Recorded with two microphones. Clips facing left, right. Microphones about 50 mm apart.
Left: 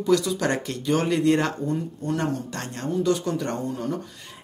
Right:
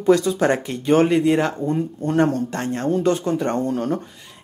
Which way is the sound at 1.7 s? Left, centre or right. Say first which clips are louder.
Right 4 dB; right.